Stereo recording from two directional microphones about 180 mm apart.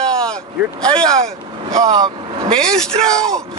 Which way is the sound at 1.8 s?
20° right (ahead or behind).